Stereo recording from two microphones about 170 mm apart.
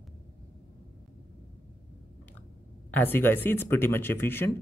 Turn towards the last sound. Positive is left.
turn(degrees=15)  # may be behind; listen again after turning